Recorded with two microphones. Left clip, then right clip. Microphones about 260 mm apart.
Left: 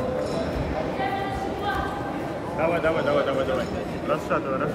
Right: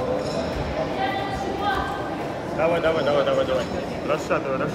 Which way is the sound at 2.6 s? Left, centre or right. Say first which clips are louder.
Right 2 dB; right.